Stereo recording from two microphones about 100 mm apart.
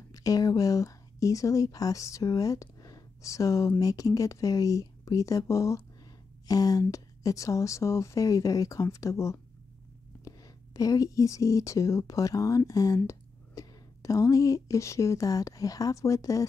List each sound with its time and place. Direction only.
0.1 s speech: 35° left (ahead or behind)